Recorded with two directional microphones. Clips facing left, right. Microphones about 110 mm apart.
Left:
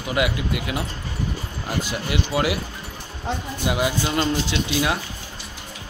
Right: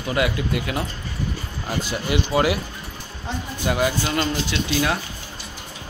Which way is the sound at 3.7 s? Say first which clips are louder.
Right 1 dB; 15° left (ahead or behind).